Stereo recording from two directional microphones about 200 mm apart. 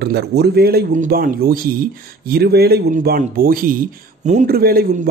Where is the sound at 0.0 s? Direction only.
55° right (ahead or behind).